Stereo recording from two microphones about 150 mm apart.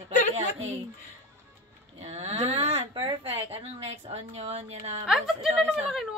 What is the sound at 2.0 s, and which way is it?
Speech, 45° right (ahead or behind).